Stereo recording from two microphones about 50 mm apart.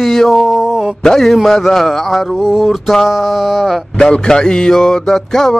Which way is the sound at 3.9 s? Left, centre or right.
Centre.